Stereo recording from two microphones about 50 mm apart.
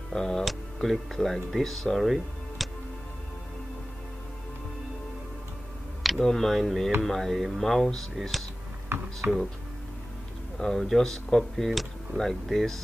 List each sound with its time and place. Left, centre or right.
0.1 s speech: centre
6.2 s speech: centre
8.8 s computer keyboard: right
10.6 s speech: centre